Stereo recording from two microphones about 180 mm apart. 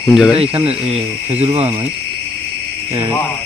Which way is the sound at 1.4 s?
35° right (ahead or behind).